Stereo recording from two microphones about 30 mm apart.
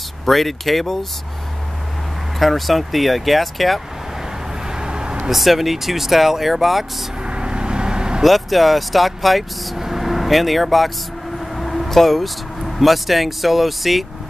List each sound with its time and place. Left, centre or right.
0.2 s speech: centre
2.3 s speech: centre
4.6 s vehicle: right
5.3 s speech: centre
7.2 s vehicle: right
8.2 s speech: centre
11.3 s vehicle: centre
11.9 s speech: centre